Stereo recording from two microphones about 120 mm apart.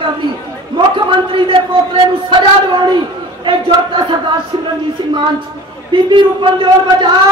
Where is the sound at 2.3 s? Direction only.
40° right (ahead or behind).